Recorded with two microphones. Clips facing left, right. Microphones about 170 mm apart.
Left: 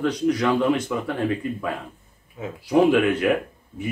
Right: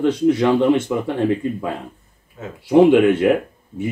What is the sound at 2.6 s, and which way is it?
Speech, 25° right (ahead or behind).